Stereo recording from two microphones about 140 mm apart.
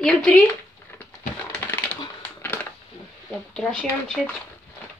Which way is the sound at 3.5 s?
5° left (ahead or behind).